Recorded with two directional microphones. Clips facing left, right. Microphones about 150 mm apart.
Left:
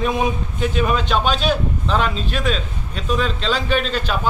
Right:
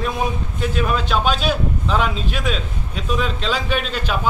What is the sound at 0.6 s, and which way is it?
A man's voice, centre (ahead or behind).